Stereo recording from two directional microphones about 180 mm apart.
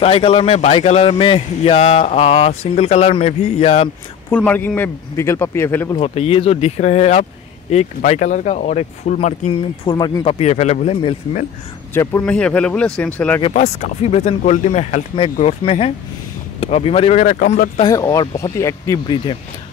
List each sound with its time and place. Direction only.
0.0 s a man's voice: 30° left (ahead or behind)
4.5 s a man's voice: 10° left (ahead or behind)
5.9 s a man's voice: 30° left (ahead or behind)
9.8 s speech: 25° left (ahead or behind)
10.4 s a man's voice: 40° left (ahead or behind)
11.9 s a man's voice: 15° left (ahead or behind)
13.5 s a man's voice: 40° left (ahead or behind)
17.8 s speech: 20° left (ahead or behind)